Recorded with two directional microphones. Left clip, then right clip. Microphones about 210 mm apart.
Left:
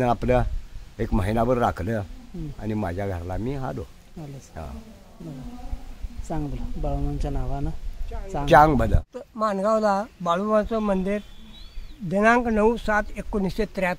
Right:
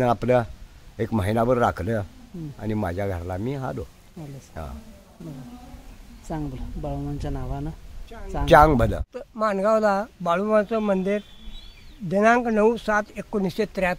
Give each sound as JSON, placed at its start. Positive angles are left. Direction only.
{"t": 0.0, "sound": "speech", "side_deg": -10}
{"t": 6.2, "sound": "speech", "side_deg": 0}
{"t": 8.5, "sound": "speech", "side_deg": -15}